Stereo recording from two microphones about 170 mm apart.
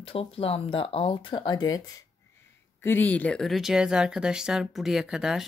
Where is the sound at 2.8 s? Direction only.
10° left (ahead or behind).